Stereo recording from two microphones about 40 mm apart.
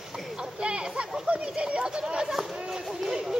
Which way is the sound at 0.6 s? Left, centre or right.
Right.